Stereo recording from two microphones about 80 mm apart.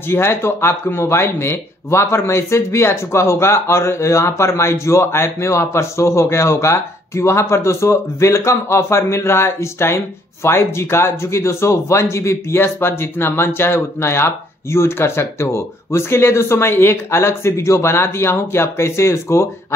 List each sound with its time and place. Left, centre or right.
0.1 s speech: left